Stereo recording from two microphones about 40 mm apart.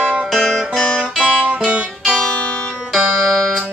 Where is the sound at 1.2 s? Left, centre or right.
Centre.